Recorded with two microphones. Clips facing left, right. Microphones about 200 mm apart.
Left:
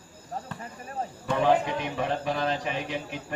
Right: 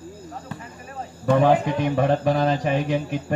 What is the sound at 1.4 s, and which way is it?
A man's voice, 50° right (ahead or behind).